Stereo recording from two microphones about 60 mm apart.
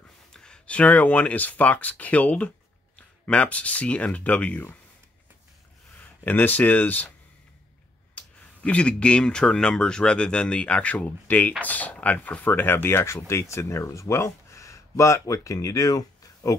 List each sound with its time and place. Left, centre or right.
0.3 s speech: centre
6.2 s speech: left
8.1 s speech: left